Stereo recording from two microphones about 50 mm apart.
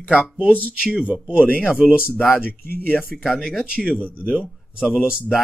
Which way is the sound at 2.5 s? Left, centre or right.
Left.